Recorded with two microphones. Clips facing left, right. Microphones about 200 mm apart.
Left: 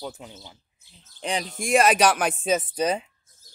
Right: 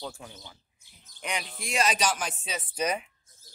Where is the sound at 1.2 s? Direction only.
35° left (ahead or behind).